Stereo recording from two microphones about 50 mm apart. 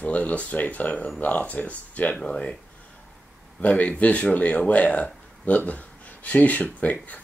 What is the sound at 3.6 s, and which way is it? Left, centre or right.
Speech, left.